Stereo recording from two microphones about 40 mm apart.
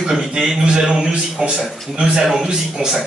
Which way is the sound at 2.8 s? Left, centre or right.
Centre.